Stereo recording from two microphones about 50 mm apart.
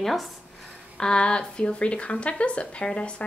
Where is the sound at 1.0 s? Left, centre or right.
Centre.